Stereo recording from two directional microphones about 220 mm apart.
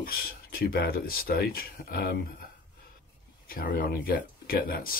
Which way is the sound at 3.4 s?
40° left (ahead or behind).